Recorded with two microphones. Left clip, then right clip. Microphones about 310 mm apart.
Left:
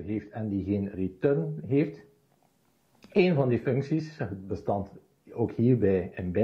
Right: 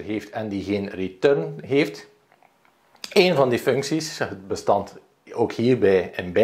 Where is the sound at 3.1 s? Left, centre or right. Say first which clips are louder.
Right 7 dB; right.